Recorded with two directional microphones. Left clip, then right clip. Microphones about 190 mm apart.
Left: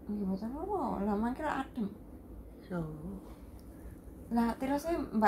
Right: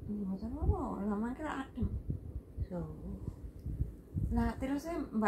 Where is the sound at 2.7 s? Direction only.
30° left (ahead or behind).